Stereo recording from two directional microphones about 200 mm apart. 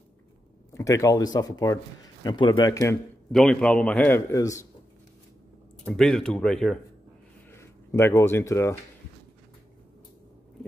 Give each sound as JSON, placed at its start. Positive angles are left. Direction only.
{"t": 0.7, "sound": "a man's voice", "side_deg": 15}
{"t": 3.3, "sound": "a man's voice", "side_deg": 5}
{"t": 5.9, "sound": "a man's voice", "side_deg": 5}
{"t": 7.5, "sound": "speech", "side_deg": 15}